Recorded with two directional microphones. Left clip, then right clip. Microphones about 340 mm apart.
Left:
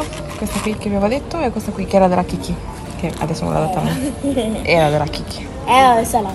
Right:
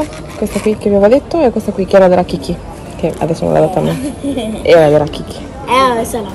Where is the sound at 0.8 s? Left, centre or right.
Left.